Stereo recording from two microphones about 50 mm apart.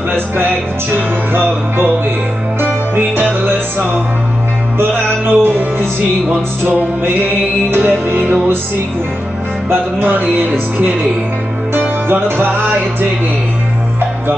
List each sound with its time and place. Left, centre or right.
0.9 s music: right
2.6 s music: right
4.9 s music: right
7.7 s music: right
9.7 s music: right
11.7 s music: right